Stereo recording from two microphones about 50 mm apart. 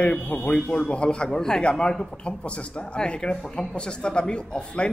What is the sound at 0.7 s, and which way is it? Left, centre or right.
A man's voice, left.